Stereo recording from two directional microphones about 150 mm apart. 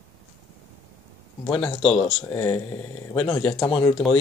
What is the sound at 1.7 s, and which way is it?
Speech, 40° left (ahead or behind).